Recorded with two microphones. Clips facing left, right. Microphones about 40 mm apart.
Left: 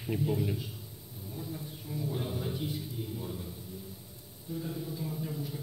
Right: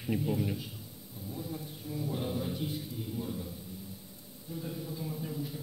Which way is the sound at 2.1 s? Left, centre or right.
Centre.